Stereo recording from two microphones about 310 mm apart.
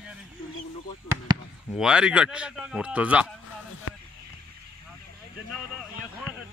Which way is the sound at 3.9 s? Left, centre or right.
Left.